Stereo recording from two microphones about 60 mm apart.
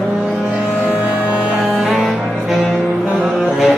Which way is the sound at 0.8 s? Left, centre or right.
Right.